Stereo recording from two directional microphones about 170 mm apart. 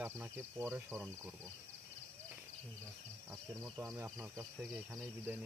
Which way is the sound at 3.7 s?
10° right (ahead or behind).